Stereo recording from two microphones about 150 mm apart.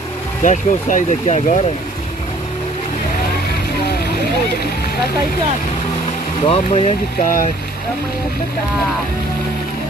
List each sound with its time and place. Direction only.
0.4 s speech: 60° left (ahead or behind)
6.4 s speech: 45° left (ahead or behind)
7.2 s speech: 65° left (ahead or behind)